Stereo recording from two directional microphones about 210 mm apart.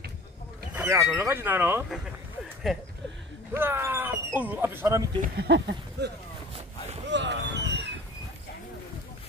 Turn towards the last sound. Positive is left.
turn(degrees=-55)  # may be behind; listen again after turning